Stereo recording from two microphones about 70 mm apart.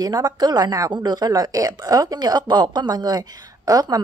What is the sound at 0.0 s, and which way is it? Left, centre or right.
Speech, right.